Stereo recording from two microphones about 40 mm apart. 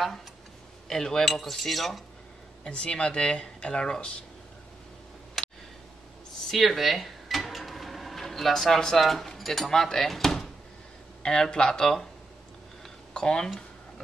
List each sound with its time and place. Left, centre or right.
0.8 s cutlery: centre
2.7 s speech: left
5.4 s a sound: centre
6.4 s cash register: centre
9.9 s cutlery: centre
11.2 s cutlery: centre
13.1 s speech: left